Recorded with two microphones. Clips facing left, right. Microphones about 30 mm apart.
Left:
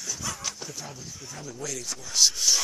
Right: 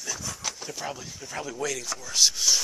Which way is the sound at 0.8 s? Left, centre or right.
Right.